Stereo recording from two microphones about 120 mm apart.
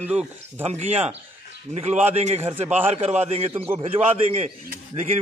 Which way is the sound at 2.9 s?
65° right (ahead or behind).